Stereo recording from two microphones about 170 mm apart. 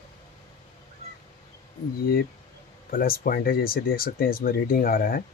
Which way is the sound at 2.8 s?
60° left (ahead or behind).